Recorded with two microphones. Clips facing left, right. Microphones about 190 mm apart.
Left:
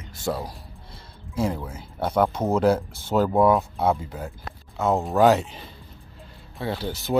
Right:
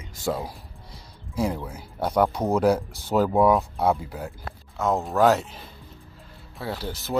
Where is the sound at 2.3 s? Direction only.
10° right (ahead or behind).